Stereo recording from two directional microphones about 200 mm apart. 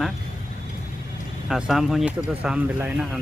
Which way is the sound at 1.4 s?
Centre (ahead or behind).